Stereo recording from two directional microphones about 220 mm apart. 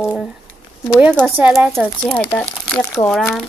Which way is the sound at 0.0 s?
Centre (ahead or behind).